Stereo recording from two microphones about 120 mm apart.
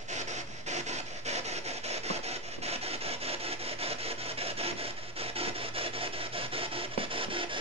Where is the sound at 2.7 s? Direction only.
55° right (ahead or behind).